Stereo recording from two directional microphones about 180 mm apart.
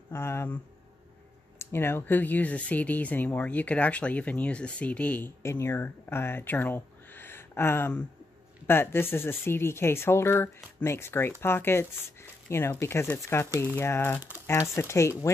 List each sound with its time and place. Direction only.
0.1 s speech: 15° left (ahead or behind)
1.6 s speech: 15° left (ahead or behind)